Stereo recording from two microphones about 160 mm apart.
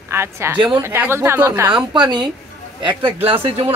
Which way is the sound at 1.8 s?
30° right (ahead or behind).